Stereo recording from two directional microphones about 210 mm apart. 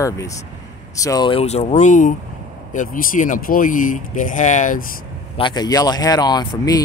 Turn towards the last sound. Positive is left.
turn(degrees=20)  # may be behind; listen again after turning